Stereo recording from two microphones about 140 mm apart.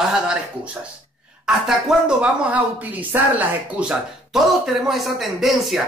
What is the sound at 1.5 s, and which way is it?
Speech, 5° right (ahead or behind).